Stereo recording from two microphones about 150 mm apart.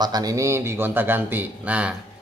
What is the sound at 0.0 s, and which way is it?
A man's voice, 25° right (ahead or behind).